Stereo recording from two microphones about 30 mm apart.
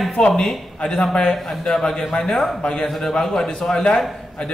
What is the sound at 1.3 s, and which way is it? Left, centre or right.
Speech, centre.